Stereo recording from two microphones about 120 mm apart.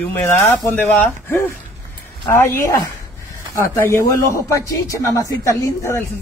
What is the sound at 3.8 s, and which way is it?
Speech, 25° left (ahead or behind).